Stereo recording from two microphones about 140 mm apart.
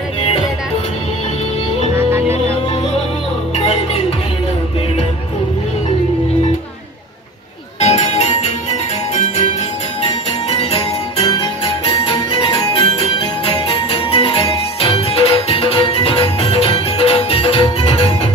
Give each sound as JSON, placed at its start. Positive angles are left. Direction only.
{"t": 2.0, "sound": "music", "side_deg": -15}
{"t": 3.5, "sound": "music", "side_deg": 45}
{"t": 7.8, "sound": "music", "side_deg": 55}
{"t": 10.5, "sound": "music", "side_deg": 45}